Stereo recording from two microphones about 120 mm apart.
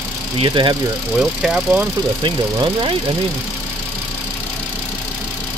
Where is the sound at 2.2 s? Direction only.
45° right (ahead or behind).